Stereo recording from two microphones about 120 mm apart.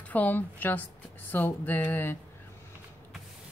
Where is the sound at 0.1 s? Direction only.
15° left (ahead or behind).